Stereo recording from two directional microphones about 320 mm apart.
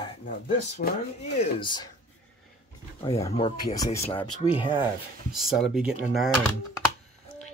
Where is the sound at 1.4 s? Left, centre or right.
Centre.